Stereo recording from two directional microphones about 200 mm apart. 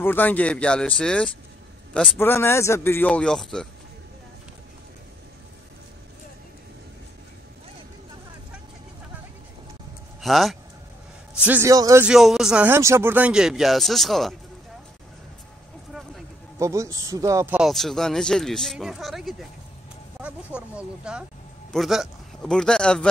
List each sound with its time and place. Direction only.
0.0 s a man's voice: 10° left (ahead or behind)
10.2 s speech: centre (ahead or behind)
11.4 s speech: 10° right (ahead or behind)
12.1 s speech: centre (ahead or behind)
16.5 s speech: 15° right (ahead or behind)
17.6 s speech: centre (ahead or behind)